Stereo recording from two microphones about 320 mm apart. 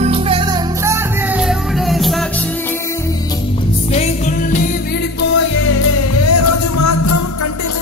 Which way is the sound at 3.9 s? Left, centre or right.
Left.